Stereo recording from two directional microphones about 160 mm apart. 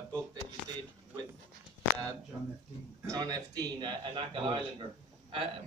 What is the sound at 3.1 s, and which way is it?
A man's voice, 25° right (ahead or behind).